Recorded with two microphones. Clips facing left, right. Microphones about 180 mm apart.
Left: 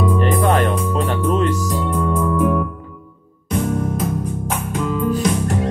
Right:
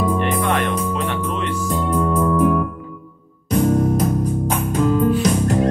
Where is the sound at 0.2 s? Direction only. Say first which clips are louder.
Left 3 dB; 40° left (ahead or behind).